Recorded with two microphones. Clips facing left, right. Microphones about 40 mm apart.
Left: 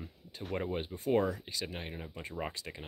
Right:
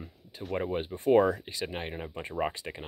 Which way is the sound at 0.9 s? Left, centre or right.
Right.